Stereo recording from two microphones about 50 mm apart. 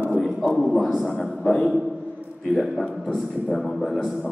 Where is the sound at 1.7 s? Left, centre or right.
Centre.